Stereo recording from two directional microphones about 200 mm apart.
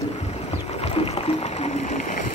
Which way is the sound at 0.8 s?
30° left (ahead or behind).